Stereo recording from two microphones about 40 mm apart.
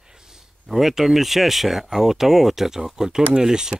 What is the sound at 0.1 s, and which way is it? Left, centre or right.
Speech, centre.